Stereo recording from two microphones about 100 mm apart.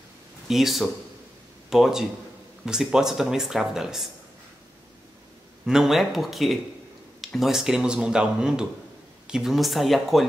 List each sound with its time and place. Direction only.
0.5 s speech: centre (ahead or behind)
5.7 s speech: 5° right (ahead or behind)